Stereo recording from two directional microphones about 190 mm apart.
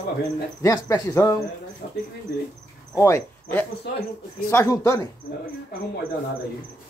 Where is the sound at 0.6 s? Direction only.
15° left (ahead or behind).